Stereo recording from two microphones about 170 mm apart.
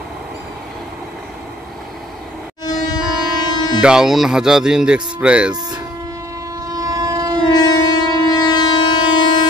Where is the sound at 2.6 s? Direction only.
25° left (ahead or behind).